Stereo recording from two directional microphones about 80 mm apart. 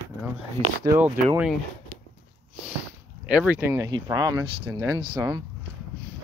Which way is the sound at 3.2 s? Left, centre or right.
Centre.